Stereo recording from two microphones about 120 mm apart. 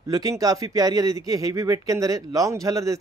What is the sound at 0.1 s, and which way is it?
Speech, 30° right (ahead or behind).